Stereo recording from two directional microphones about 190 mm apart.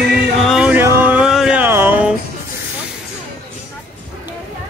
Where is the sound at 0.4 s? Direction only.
Centre (ahead or behind).